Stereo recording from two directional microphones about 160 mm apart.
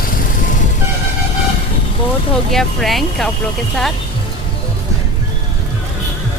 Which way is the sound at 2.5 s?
Centre (ahead or behind).